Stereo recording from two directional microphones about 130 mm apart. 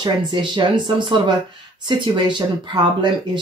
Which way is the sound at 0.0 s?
35° right (ahead or behind).